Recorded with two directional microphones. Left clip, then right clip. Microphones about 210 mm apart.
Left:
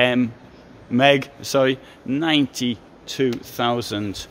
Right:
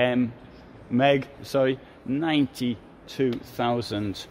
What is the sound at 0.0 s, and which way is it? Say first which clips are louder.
Speech: left 5 dB; 25° left (ahead or behind).